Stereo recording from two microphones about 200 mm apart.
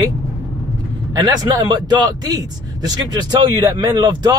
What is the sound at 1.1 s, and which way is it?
A man's voice, 20° right (ahead or behind).